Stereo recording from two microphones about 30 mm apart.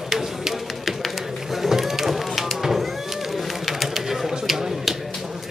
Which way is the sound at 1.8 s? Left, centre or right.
Centre.